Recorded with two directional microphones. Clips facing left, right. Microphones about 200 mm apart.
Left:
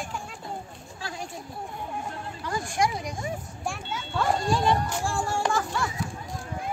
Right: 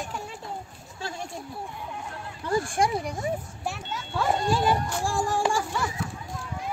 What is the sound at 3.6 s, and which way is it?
A woman's voice, centre (ahead or behind).